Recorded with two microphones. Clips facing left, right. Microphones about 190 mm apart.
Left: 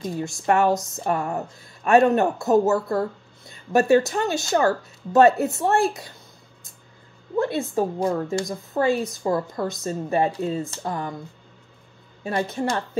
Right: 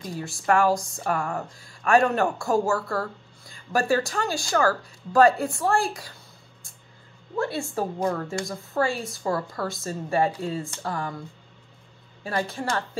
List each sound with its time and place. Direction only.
0.0 s speech: 20° left (ahead or behind)
7.3 s speech: 20° left (ahead or behind)
12.3 s speech: 20° left (ahead or behind)